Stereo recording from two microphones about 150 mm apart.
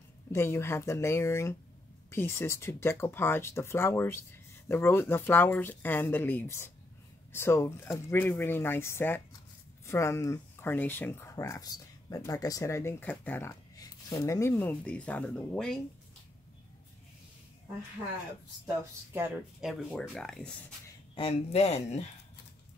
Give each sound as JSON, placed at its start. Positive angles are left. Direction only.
{"t": 0.3, "sound": "speech", "side_deg": 15}
{"t": 19.6, "sound": "speech", "side_deg": 0}
{"t": 21.1, "sound": "speech", "side_deg": 40}